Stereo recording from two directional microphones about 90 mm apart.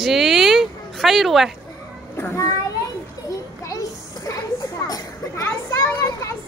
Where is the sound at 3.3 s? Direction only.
40° left (ahead or behind).